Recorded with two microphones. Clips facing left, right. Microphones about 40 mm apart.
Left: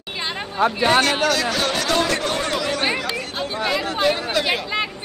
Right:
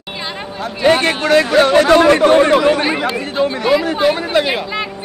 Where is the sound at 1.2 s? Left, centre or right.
Right.